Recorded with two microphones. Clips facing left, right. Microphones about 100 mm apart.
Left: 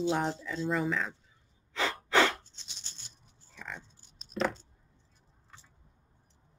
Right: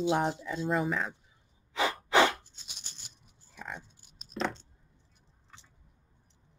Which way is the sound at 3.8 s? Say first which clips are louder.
Right 1 dB; 10° right (ahead or behind).